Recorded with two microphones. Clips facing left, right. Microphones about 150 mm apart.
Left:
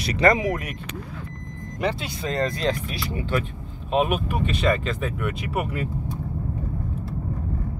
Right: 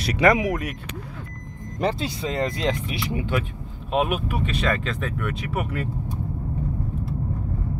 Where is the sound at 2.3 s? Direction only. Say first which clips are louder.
Left 2 dB; 20° right (ahead or behind).